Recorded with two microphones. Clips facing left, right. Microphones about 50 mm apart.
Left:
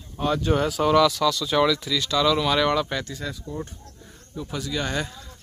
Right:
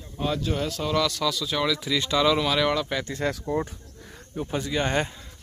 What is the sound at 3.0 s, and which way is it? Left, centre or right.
Speech, right.